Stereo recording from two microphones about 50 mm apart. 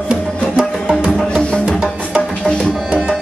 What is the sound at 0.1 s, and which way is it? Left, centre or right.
Music, centre.